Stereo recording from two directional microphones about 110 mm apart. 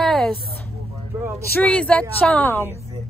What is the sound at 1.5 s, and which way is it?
Speech, 10° left (ahead or behind).